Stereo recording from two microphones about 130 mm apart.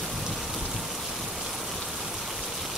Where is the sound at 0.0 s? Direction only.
Centre (ahead or behind).